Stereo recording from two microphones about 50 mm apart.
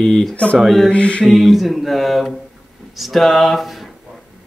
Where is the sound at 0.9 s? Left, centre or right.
Left.